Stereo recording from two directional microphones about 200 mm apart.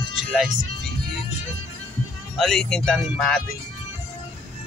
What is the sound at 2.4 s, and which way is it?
Speech, 5° left (ahead or behind).